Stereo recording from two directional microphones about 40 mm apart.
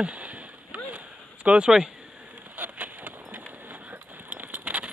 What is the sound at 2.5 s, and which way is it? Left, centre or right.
Vehicle, right.